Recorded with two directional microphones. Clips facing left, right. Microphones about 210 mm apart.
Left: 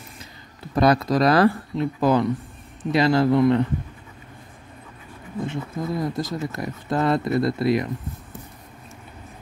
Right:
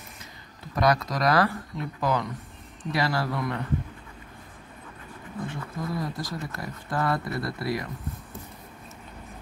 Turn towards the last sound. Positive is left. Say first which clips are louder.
# left 9 dB
turn(degrees=20)  # may be behind; listen again after turning